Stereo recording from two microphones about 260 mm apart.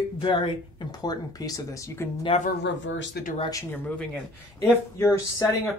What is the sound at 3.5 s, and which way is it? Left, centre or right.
Speech, centre.